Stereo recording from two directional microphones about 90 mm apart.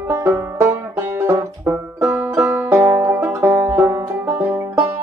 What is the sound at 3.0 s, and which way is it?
Banjo, 30° right (ahead or behind).